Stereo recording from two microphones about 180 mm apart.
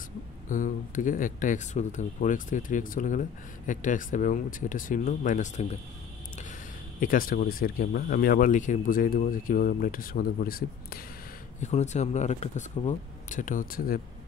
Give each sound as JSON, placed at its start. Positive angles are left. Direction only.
{"t": 0.5, "sound": "speech", "side_deg": 45}
{"t": 7.0, "sound": "speech", "side_deg": 50}
{"t": 11.6, "sound": "speech", "side_deg": 40}